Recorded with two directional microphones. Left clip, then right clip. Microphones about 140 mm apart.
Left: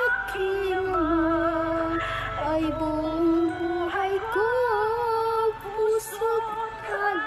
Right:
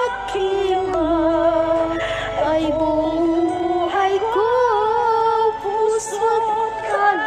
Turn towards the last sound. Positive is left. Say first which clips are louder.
# right 6 dB
turn(degrees=-40)  # may be behind; listen again after turning